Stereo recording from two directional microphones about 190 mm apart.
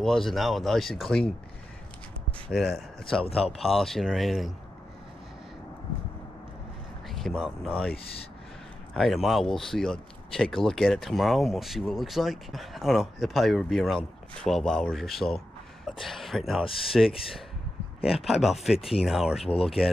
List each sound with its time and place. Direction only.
0.0 s speech: centre (ahead or behind)
2.5 s speech: centre (ahead or behind)
7.1 s speech: centre (ahead or behind)
8.9 s speech: centre (ahead or behind)
16.6 s speech: 30° left (ahead or behind)
18.2 s speech: centre (ahead or behind)
19.5 s speech: 30° left (ahead or behind)